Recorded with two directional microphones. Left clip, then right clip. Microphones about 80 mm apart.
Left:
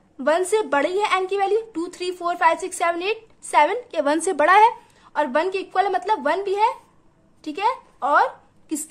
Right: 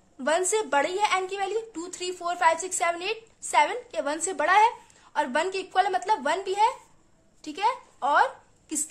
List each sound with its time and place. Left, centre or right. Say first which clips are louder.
0.2 s speech: left 5 dB; left
4.0 s speech: left 8 dB; left
5.0 s a woman's voice: left 5 dB; left
7.4 s a sound: left 4 dB; left